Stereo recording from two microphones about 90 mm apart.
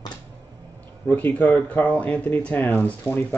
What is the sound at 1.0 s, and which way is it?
Speech, 20° left (ahead or behind).